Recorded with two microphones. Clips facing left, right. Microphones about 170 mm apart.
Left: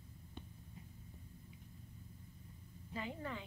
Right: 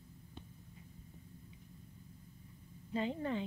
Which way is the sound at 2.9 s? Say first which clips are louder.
Right 8 dB; 25° right (ahead or behind).